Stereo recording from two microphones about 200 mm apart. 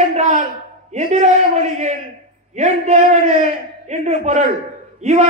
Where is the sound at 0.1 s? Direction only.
35° right (ahead or behind).